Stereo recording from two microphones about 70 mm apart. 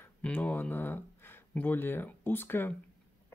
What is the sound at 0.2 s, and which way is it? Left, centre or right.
Speech, left.